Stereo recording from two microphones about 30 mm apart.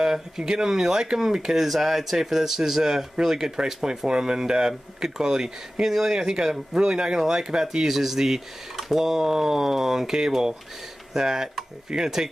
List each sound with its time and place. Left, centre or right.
0.4 s speech: right
5.9 s speech: centre
6.1 s speech: right
10.1 s speech: right